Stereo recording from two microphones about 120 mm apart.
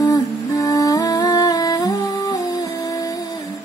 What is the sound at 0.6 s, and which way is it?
Humming, 25° left (ahead or behind).